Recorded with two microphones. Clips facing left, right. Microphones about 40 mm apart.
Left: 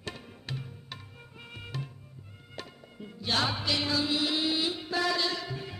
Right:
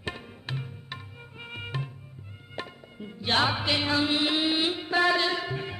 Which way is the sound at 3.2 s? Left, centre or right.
Right.